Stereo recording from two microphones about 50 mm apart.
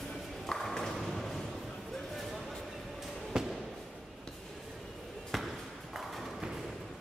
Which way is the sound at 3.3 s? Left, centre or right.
Centre.